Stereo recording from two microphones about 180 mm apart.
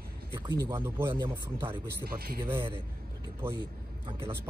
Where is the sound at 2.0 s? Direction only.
55° right (ahead or behind).